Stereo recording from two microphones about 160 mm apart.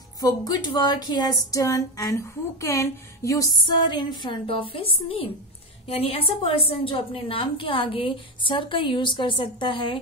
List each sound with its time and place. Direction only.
0.5 s speech: 25° left (ahead or behind)
3.9 s a woman's voice: 30° left (ahead or behind)